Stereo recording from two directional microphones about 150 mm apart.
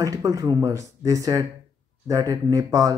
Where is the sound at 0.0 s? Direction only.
20° right (ahead or behind).